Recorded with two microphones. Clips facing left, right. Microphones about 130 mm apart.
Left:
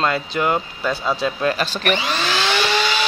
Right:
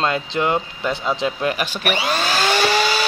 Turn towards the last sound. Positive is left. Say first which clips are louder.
# right 2 dB
turn(degrees=-40)  # may be behind; listen again after turning